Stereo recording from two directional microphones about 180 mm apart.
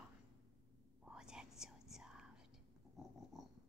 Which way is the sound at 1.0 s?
5° right (ahead or behind).